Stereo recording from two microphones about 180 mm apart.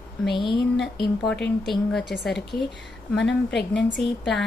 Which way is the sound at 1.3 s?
5° left (ahead or behind).